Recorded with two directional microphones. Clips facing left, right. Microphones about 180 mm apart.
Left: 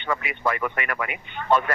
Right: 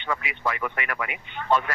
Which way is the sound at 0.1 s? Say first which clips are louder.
Left 3 dB; 50° left (ahead or behind).